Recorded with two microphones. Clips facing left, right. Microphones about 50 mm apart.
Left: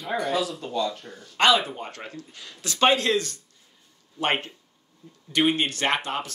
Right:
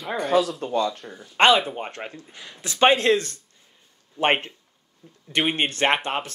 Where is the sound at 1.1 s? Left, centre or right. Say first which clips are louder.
Right 2 dB; centre.